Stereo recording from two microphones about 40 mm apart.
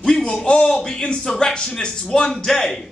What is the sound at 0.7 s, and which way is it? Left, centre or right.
A man's voice, centre.